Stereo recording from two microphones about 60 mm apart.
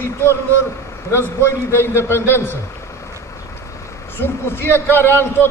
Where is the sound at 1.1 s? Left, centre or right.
Left.